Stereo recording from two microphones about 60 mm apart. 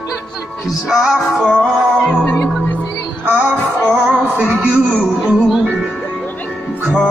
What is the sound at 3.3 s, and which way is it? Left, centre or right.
Music, right.